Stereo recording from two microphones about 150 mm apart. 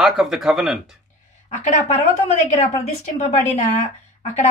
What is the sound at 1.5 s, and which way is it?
Speech, 55° left (ahead or behind).